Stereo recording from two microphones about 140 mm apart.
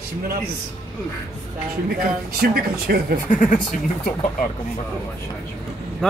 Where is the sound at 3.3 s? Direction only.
65° left (ahead or behind).